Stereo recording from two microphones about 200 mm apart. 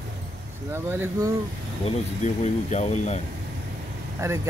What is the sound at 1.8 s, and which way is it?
Speech, 35° left (ahead or behind).